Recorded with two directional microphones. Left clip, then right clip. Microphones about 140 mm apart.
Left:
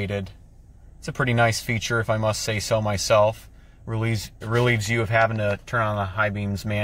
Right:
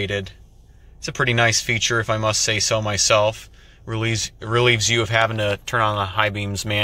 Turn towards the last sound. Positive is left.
turn(degrees=5)  # may be behind; listen again after turning